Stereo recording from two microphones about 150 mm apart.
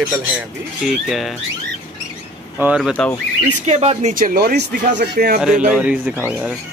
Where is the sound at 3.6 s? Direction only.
50° right (ahead or behind).